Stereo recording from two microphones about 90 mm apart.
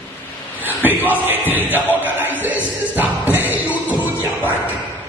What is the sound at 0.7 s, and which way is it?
Speech, 20° right (ahead or behind).